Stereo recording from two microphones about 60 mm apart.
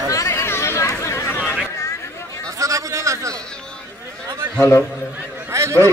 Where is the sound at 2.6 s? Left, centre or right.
Right.